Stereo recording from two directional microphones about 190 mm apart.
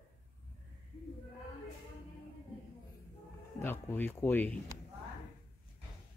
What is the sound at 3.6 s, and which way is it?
Speech, 10° left (ahead or behind).